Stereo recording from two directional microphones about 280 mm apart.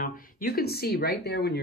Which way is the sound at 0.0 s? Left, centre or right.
Left.